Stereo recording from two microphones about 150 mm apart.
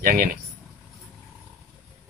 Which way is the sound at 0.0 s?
70° right (ahead or behind).